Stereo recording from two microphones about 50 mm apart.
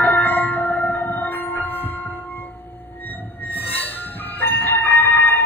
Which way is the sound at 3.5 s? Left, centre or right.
Left.